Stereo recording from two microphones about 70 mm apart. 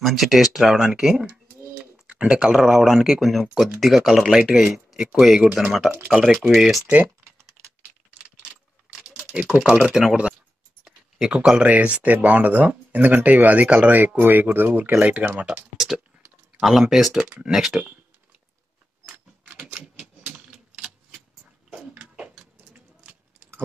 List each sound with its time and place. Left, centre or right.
0.0 s speech: centre
6.1 s speech: centre
6.4 s speech: centre
7.8 s typewriter: centre
9.2 s speech: centre
10.8 s a sound: centre
11.6 s speech: centre
16.5 s speech: centre
19.1 s a sound: centre